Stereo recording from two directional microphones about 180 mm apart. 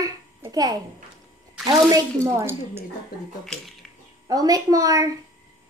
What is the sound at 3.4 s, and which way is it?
Speech, centre (ahead or behind).